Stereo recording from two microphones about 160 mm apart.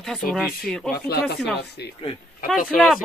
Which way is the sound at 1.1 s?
90° left.